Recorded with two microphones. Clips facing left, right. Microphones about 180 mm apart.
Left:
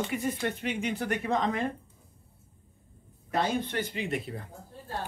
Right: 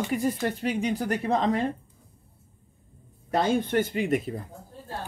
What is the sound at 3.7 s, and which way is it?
Speech, 45° right (ahead or behind).